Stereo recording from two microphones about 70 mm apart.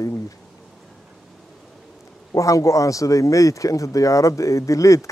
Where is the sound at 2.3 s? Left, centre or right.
Left.